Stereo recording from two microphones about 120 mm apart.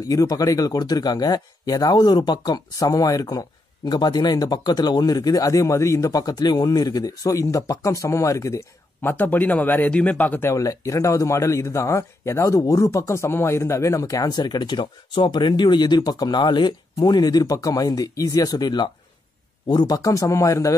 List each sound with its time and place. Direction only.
0.0 s speech: 30° left (ahead or behind)
9.1 s speech: 15° left (ahead or behind)